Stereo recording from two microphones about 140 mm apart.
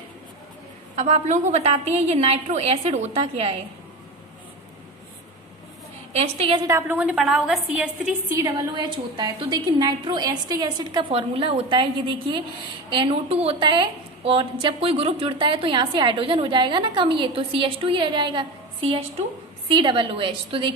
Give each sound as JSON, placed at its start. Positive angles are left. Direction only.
{"t": 0.9, "sound": "a woman's voice", "side_deg": -55}
{"t": 6.1, "sound": "a woman's voice", "side_deg": -45}
{"t": 6.7, "sound": "a woman's voice", "side_deg": -10}
{"t": 8.4, "sound": "a woman's voice", "side_deg": -25}